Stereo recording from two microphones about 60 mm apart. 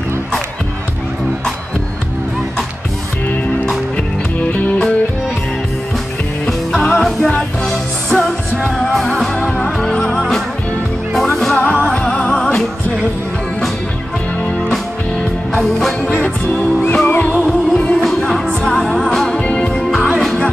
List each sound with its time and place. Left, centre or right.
3.6 s music: left
6.8 s music: centre
10.0 s music: centre
11.9 s music: centre
15.5 s music: centre
16.1 s music: left
17.5 s music: centre